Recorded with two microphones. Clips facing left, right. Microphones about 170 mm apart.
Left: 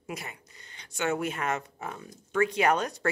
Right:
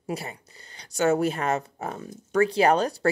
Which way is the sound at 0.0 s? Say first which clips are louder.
Right 7 dB; 35° right (ahead or behind).